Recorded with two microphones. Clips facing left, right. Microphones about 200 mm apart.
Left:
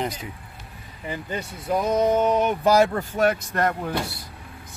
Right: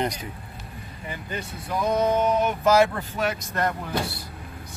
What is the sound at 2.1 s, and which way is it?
Speech, 35° left (ahead or behind).